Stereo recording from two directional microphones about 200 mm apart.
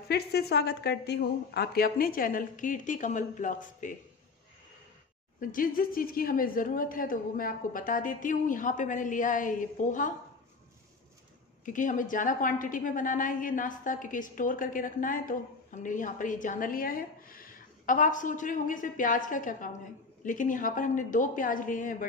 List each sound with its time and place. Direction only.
0.1 s a woman's voice: 55° left (ahead or behind)
5.4 s a woman's voice: 45° left (ahead or behind)
11.6 s a woman's voice: 40° left (ahead or behind)